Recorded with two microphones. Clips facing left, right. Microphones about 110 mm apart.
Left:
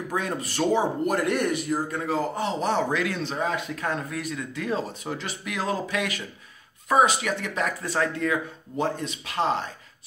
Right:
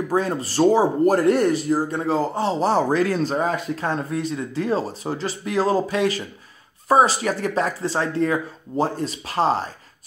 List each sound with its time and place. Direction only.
0.1 s speech: 35° right (ahead or behind)